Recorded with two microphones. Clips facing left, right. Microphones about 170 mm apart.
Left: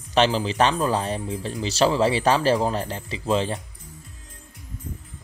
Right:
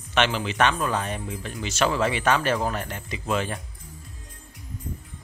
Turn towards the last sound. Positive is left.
turn(degrees=30)  # may be behind; listen again after turning